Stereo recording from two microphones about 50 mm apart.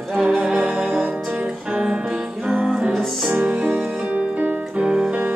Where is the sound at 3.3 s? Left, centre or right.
Right.